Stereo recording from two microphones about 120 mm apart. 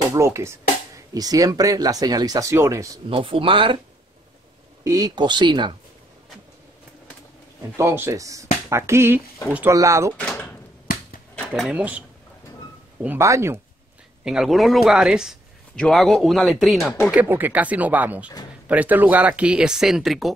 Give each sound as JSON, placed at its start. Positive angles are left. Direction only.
{"t": 0.1, "sound": "speech", "side_deg": -25}
{"t": 3.1, "sound": "speech", "side_deg": -50}
{"t": 4.8, "sound": "speech", "side_deg": -30}
{"t": 7.7, "sound": "speech", "side_deg": -20}
{"t": 10.1, "sound": "door", "side_deg": 10}
{"t": 11.7, "sound": "speech", "side_deg": -10}
{"t": 13.2, "sound": "speech", "side_deg": -25}
{"t": 14.2, "sound": "speech", "side_deg": -5}
{"t": 17.1, "sound": "speech", "side_deg": -15}